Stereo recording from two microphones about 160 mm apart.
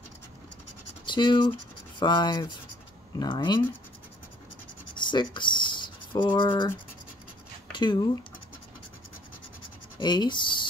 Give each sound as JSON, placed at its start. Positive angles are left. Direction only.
{"t": 1.0, "sound": "speech", "side_deg": 30}
{"t": 5.0, "sound": "rub", "side_deg": 30}
{"t": 7.7, "sound": "speech", "side_deg": 25}
{"t": 9.9, "sound": "speech", "side_deg": 30}